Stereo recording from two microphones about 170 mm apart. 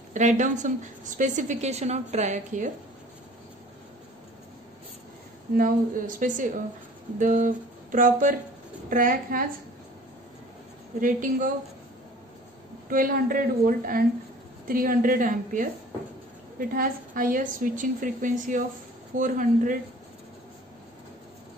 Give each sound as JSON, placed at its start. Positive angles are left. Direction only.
{"t": 0.1, "sound": "a woman's voice", "side_deg": -45}
{"t": 5.6, "sound": "a woman's voice", "side_deg": -50}
{"t": 7.2, "sound": "a sound", "side_deg": -50}
{"t": 8.9, "sound": "a woman's voice", "side_deg": -55}
{"t": 11.0, "sound": "a woman's voice", "side_deg": -50}
{"t": 12.9, "sound": "a woman's voice", "side_deg": -55}